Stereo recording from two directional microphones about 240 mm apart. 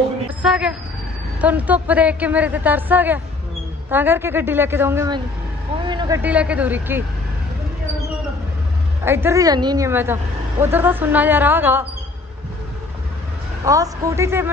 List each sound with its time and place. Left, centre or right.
0.3 s speech: centre
9.0 s speech: centre
13.7 s speech: centre